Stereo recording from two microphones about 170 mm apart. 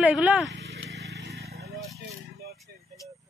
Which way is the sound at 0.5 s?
80° right.